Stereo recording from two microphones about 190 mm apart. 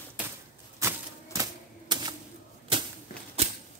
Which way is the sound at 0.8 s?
15° right (ahead or behind).